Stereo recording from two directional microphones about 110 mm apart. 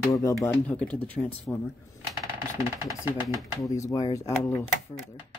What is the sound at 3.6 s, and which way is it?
Speech, 35° left (ahead or behind).